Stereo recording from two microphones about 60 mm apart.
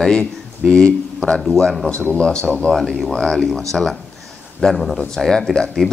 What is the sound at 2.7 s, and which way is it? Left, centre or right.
Speech, centre.